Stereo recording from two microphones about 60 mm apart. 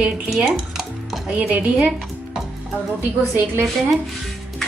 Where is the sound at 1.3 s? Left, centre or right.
Right.